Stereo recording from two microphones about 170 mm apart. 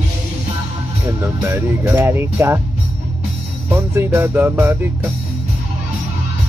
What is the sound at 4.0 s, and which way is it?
Speech, 15° right (ahead or behind).